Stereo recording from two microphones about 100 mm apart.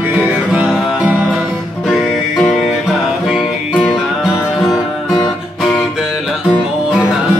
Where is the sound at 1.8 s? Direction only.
5° left (ahead or behind).